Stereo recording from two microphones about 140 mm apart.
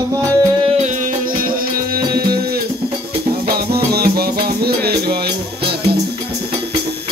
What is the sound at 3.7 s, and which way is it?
Music, 90° right.